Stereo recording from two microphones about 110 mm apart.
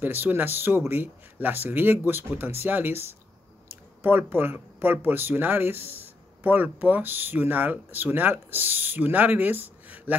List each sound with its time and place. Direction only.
0.0 s speech: 20° right (ahead or behind)